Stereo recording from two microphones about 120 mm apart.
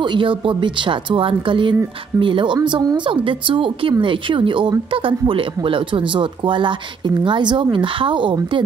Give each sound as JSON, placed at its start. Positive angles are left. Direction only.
{"t": 0.0, "sound": "speech", "side_deg": -40}